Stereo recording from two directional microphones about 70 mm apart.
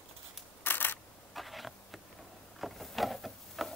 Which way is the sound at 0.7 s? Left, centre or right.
Left.